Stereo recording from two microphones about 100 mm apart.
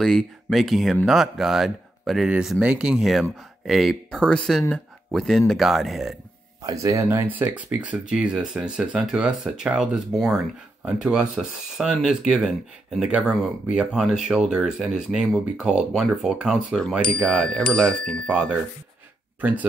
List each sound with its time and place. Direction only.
0.0 s speech: 5° left (ahead or behind)
6.6 s speech: 30° right (ahead or behind); by 16.8 s 5° right (ahead or behind)
17.0 s speech: 10° left (ahead or behind)